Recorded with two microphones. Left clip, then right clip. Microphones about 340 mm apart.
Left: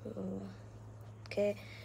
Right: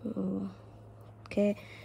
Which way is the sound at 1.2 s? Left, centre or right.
Centre.